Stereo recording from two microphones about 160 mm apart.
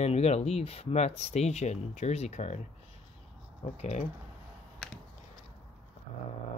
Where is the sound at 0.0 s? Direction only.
40° left (ahead or behind).